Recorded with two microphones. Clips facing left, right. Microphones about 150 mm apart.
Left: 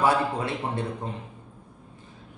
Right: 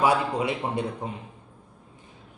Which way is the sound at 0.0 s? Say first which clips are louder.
Right 1 dB; 15° right (ahead or behind).